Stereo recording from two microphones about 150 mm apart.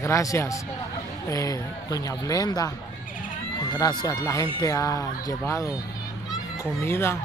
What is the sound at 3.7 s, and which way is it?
Speech, 25° left (ahead or behind).